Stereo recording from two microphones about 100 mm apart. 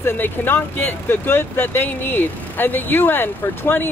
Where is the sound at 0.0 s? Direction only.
20° left (ahead or behind).